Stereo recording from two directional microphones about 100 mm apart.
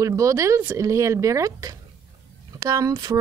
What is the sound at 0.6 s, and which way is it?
Speech, 20° right (ahead or behind).